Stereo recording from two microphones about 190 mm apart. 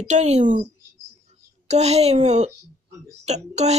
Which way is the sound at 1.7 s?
35° right (ahead or behind).